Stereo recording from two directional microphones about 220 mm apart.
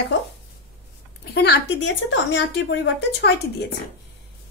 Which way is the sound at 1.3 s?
50° left (ahead or behind).